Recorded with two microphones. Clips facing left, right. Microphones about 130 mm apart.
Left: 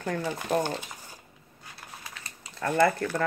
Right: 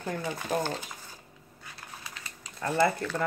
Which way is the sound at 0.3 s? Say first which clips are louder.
Left 2 dB; 15° left (ahead or behind).